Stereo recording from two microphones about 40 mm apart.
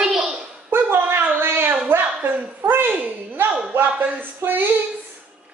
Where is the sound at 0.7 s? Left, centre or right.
Right.